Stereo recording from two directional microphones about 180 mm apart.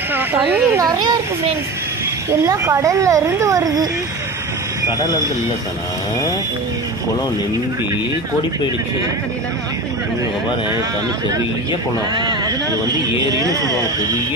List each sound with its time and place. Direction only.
0.1 s speech: 10° right (ahead or behind)
2.4 s speech: 15° right (ahead or behind)
12.4 s speech: 20° right (ahead or behind)